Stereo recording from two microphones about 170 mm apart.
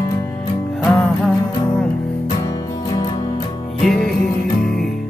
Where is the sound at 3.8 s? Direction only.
Centre (ahead or behind).